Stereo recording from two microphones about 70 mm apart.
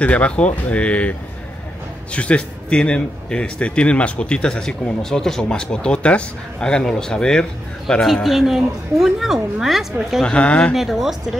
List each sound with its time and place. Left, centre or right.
0.0 s speech: centre
2.1 s a man's voice: centre
8.1 s speech: centre
10.2 s a man's voice: centre
10.7 s speech: centre